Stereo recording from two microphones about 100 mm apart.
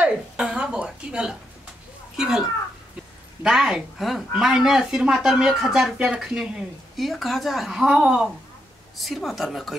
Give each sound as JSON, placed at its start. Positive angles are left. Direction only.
{"t": 0.0, "sound": "speech", "side_deg": -10}
{"t": 3.4, "sound": "speech", "side_deg": -5}